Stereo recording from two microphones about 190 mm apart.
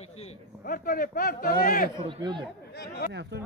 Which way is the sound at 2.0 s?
25° right (ahead or behind).